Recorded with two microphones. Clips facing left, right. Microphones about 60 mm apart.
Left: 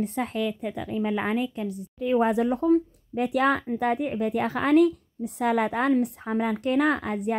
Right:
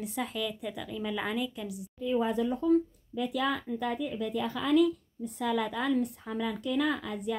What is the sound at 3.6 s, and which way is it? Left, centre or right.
A woman's voice, left.